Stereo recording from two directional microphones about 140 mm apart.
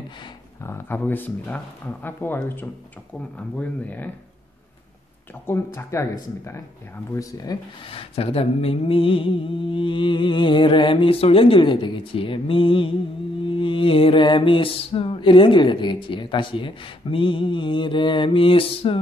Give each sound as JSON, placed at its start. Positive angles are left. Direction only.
{"t": 0.7, "sound": "speech", "side_deg": 15}
{"t": 5.5, "sound": "speech", "side_deg": 20}
{"t": 7.9, "sound": "mantra", "side_deg": 45}